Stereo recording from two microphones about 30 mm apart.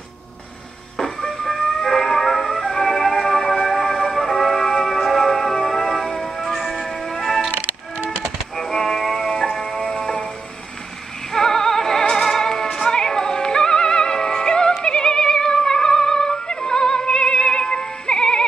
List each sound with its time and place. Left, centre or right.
1.4 s music: centre
6.4 s music: centre
8.5 s music: centre
11.3 s music: centre